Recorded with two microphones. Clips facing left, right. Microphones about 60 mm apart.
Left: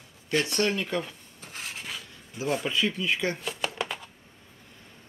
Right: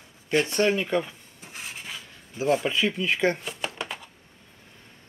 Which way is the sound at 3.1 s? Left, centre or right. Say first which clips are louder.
Right 5 dB; right.